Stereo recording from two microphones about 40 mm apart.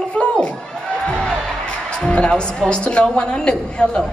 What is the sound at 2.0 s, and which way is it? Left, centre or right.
A woman's voice, left.